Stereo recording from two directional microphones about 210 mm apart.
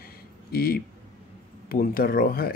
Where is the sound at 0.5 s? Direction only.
45° left (ahead or behind).